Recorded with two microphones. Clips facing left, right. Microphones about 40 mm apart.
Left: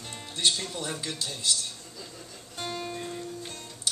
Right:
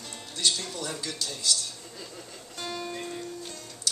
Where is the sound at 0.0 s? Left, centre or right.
Left.